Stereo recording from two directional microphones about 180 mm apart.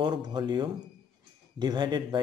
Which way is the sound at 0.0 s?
25° right (ahead or behind).